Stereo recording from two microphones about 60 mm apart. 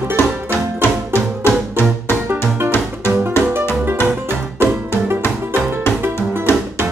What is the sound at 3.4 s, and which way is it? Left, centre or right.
Music, left.